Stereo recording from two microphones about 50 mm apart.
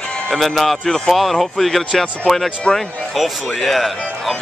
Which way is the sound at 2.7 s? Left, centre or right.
Centre.